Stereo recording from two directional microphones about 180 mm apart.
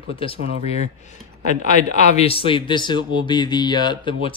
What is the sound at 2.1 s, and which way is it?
Speech, 30° left (ahead or behind).